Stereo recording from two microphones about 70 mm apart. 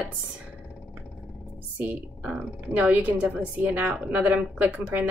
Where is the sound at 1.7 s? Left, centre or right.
Centre.